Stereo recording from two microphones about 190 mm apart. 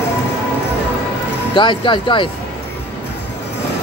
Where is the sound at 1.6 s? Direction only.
25° left (ahead or behind).